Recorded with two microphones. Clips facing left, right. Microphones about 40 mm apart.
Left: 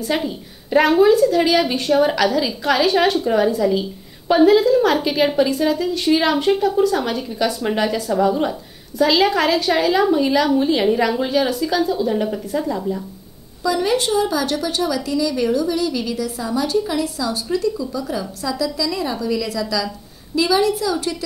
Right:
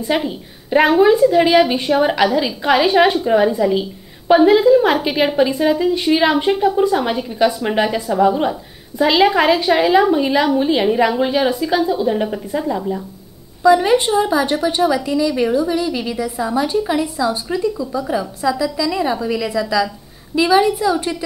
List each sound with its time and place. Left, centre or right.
0.0 s a woman's voice: centre